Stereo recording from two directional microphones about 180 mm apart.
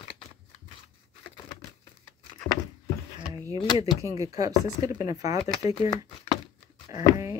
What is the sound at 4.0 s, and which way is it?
Speech, 20° right (ahead or behind).